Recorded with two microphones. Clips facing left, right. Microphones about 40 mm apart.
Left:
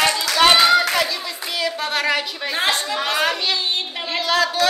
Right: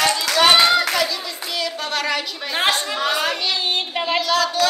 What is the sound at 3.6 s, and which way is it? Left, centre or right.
Speech, right.